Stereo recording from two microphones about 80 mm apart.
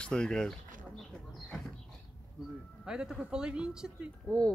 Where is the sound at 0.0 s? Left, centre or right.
Centre.